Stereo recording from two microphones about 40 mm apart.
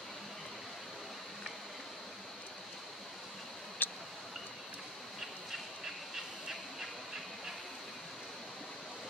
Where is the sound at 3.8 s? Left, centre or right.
Left.